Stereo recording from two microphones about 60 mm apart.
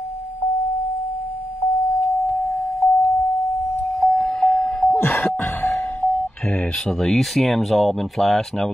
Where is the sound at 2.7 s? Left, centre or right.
Centre.